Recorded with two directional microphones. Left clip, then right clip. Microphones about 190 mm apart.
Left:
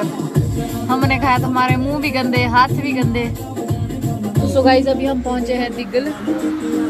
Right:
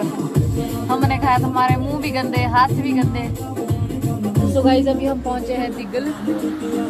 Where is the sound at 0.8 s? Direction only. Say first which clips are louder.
Left 2 dB; 15° left (ahead or behind).